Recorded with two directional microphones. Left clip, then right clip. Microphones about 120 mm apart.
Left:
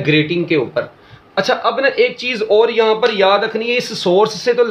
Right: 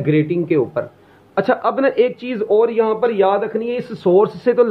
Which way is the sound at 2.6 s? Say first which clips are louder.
Left 3 dB; 20° right (ahead or behind).